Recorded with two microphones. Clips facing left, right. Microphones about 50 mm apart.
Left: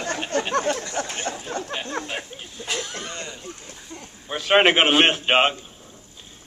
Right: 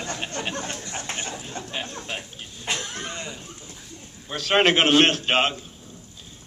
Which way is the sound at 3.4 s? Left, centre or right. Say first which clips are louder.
Left 3 dB; left.